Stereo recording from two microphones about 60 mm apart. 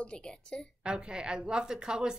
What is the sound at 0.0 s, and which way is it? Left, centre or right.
Speech, centre.